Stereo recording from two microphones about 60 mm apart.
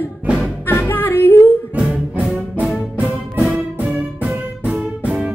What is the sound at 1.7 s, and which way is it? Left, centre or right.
Music, right.